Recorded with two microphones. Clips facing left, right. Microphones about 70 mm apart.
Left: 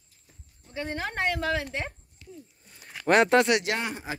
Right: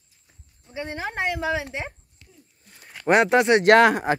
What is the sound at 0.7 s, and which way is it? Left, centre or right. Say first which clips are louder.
Speech: right 2 dB; centre.